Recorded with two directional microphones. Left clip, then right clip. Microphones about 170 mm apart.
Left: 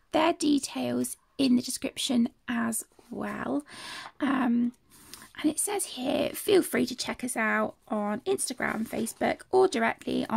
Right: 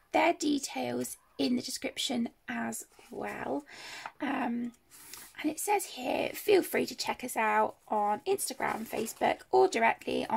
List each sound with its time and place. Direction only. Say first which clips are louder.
0.1 s speech: left 2 dB; 40° left (ahead or behind)